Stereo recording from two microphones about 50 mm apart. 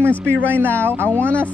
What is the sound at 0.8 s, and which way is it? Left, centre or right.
Speech, right.